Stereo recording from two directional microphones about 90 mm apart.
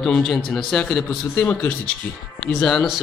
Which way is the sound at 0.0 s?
5° left (ahead or behind).